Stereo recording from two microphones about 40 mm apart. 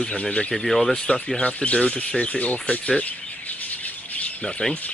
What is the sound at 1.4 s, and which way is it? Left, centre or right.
Speech, left.